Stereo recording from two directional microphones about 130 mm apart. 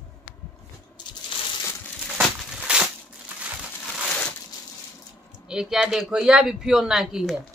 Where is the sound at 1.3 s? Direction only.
40° left (ahead or behind).